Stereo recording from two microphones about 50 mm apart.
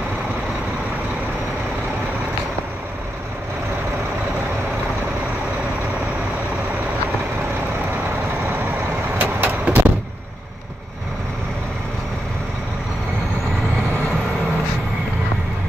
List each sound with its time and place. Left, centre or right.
9.2 s vehicle: right